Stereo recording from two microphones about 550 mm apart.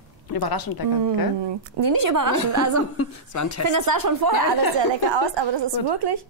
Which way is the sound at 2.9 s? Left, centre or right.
Left.